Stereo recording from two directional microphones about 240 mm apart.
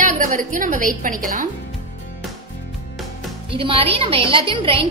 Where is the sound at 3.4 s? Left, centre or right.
Right.